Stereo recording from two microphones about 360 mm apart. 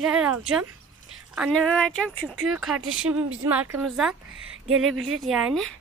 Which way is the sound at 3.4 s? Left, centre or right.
Centre.